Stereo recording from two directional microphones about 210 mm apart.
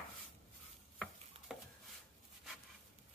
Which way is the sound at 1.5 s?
Centre (ahead or behind).